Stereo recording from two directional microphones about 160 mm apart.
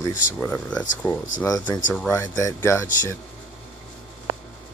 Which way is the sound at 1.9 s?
10° left (ahead or behind).